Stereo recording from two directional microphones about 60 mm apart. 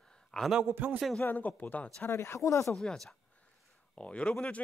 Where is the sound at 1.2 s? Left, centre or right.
Left.